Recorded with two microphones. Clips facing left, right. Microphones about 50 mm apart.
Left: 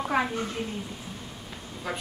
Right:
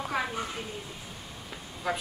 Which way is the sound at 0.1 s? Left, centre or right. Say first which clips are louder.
Left 5 dB; centre.